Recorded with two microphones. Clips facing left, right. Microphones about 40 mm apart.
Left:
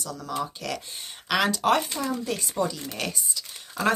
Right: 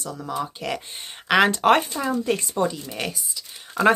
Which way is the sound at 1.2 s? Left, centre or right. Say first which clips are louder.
Right 6 dB; right.